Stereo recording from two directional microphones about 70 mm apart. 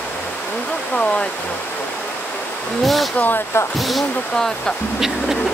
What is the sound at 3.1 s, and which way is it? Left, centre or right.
Speech, left.